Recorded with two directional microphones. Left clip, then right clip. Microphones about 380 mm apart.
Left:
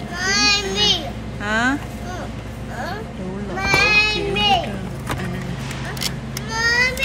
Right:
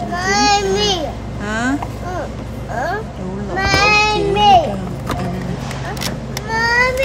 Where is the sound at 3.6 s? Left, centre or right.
Right.